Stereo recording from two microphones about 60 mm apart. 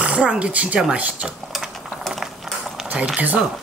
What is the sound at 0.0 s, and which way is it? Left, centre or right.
Speech, centre.